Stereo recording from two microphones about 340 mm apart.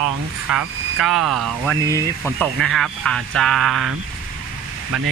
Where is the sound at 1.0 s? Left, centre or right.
Centre.